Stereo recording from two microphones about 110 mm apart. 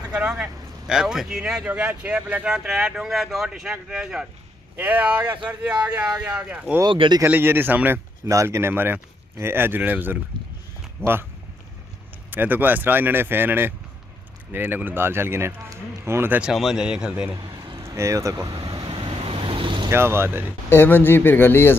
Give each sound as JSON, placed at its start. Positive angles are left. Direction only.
{"t": 0.1, "sound": "speech", "side_deg": -10}
{"t": 6.9, "sound": "speech", "side_deg": -50}
{"t": 7.2, "sound": "speech", "side_deg": -20}
{"t": 12.3, "sound": "speech", "side_deg": -15}
{"t": 16.4, "sound": "speech", "side_deg": -5}
{"t": 17.6, "sound": "a sound", "side_deg": -40}
{"t": 17.8, "sound": "speech", "side_deg": -30}
{"t": 18.9, "sound": "vehicle", "side_deg": -55}
{"t": 19.9, "sound": "speech", "side_deg": -20}
{"t": 20.7, "sound": "a man's voice", "side_deg": 20}